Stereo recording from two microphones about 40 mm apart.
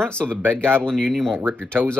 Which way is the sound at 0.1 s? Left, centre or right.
Left.